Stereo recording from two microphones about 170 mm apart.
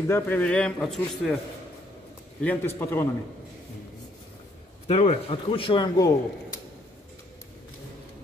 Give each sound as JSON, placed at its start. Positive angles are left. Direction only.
{"t": 0.1, "sound": "speech", "side_deg": 10}
{"t": 2.4, "sound": "speech", "side_deg": 10}
{"t": 4.8, "sound": "a man's voice", "side_deg": 35}